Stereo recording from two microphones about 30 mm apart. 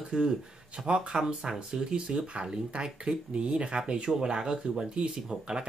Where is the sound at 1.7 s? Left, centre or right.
Right.